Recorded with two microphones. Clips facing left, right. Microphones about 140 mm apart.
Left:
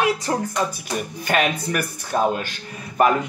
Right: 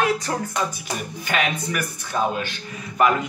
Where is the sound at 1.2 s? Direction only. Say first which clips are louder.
Left 3 dB; 50° left (ahead or behind).